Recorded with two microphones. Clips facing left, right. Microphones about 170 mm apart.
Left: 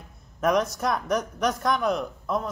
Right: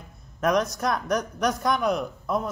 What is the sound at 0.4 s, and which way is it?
A woman's voice, centre (ahead or behind).